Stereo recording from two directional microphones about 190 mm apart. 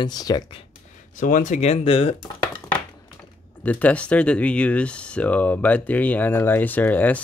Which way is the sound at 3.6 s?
10° left (ahead or behind).